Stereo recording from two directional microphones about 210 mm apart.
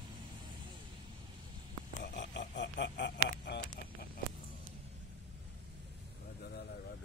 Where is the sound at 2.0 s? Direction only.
55° left (ahead or behind).